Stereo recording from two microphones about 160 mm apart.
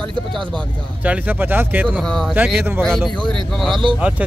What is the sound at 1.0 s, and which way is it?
Speech, 10° right (ahead or behind).